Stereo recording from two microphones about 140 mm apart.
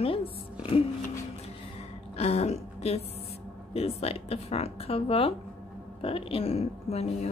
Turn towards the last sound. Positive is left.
turn(degrees=50)  # may be behind; listen again after turning